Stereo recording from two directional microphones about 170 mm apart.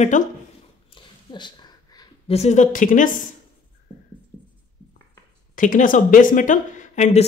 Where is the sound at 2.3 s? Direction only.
40° left (ahead or behind).